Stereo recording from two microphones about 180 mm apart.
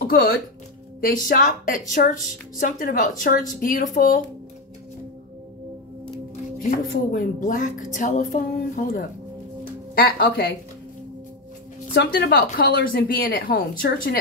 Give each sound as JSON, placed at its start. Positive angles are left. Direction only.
{"t": 0.0, "sound": "a woman's voice", "side_deg": 55}
{"t": 6.7, "sound": "a woman's voice", "side_deg": 50}
{"t": 11.9, "sound": "a woman's voice", "side_deg": 60}